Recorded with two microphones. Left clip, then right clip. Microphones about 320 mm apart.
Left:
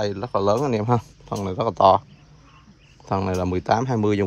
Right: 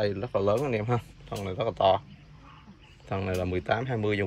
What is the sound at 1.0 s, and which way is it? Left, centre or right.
Speech, centre.